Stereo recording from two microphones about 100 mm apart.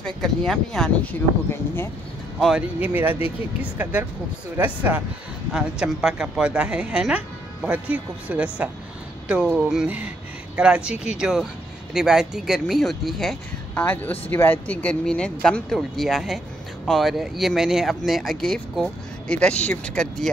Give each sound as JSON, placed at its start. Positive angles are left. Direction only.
{"t": 0.0, "sound": "speech", "side_deg": 5}
{"t": 2.8, "sound": "speech", "side_deg": -15}
{"t": 13.7, "sound": "speech", "side_deg": 15}